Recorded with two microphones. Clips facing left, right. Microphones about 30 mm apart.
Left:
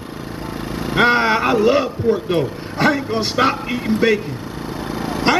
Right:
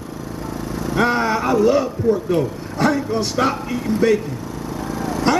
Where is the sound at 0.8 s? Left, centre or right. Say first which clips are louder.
Left 4 dB; left.